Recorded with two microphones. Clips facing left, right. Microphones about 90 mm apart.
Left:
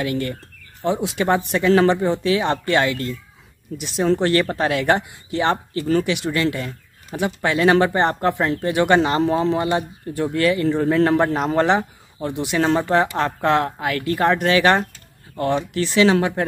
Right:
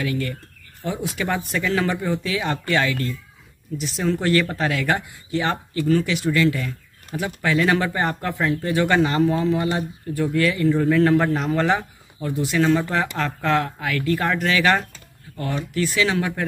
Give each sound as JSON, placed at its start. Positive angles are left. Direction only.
{"t": 0.0, "sound": "speech", "side_deg": 30}
{"t": 1.7, "sound": "speech", "side_deg": 35}
{"t": 4.0, "sound": "speech", "side_deg": 35}
{"t": 4.6, "sound": "speech", "side_deg": 25}
{"t": 6.3, "sound": "speech", "side_deg": 35}
{"t": 7.2, "sound": "speech", "side_deg": 25}
{"t": 12.8, "sound": "speech", "side_deg": 20}